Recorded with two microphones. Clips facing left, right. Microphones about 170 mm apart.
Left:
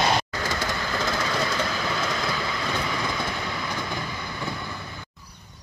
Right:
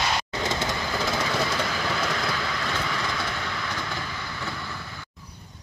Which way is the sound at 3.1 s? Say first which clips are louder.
Left 1 dB; 15° left (ahead or behind).